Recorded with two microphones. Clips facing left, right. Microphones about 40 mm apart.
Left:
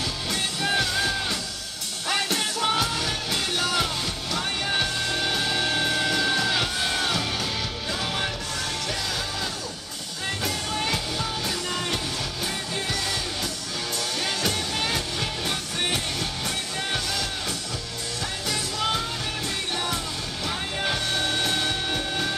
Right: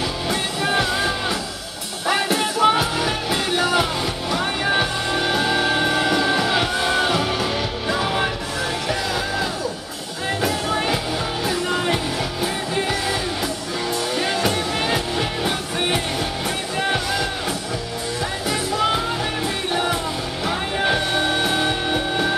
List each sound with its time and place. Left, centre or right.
0.3 s music: centre
10.4 s music: centre
14.1 s music: centre
18.5 s music: centre